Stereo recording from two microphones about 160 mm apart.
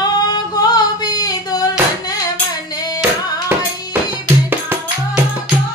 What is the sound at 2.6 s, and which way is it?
Music, 25° left (ahead or behind).